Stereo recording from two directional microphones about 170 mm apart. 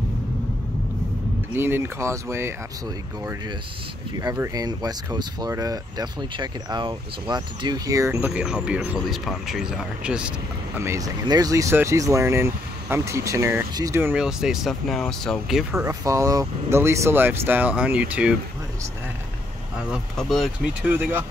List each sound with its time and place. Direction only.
1.5 s speech: 15° right (ahead or behind)
4.2 s speech: 20° right (ahead or behind)
8.3 s speech: 5° right (ahead or behind)
10.8 s speech: 20° right (ahead or behind)
14.1 s speech: 5° right (ahead or behind)
15.7 s speech: 15° right (ahead or behind)
19.8 s speech: centre (ahead or behind)